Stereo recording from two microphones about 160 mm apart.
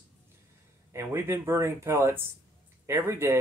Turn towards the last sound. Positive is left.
turn(degrees=-15)  # may be behind; listen again after turning